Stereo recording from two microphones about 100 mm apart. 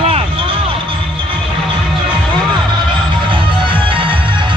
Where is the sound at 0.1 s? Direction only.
65° right (ahead or behind).